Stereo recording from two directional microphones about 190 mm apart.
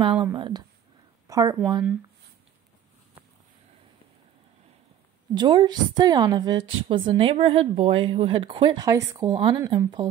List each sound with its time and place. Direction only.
0.2 s a woman's voice: 25° right (ahead or behind)
5.3 s a woman's voice: 25° right (ahead or behind)